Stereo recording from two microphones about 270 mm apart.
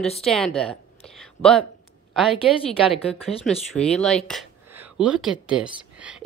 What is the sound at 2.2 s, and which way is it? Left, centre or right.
A woman's voice, centre.